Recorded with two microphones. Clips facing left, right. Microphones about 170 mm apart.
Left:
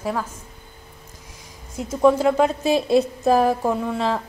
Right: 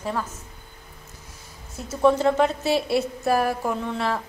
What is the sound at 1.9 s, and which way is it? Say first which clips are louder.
A woman's voice: left 2 dB; 10° left (ahead or behind).